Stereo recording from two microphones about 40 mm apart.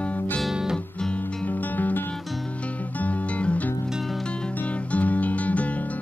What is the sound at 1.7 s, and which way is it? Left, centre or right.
Music, left.